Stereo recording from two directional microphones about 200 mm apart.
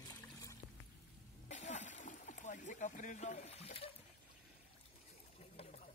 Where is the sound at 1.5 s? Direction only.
35° left (ahead or behind).